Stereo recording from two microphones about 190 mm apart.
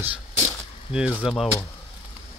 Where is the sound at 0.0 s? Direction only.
10° right (ahead or behind).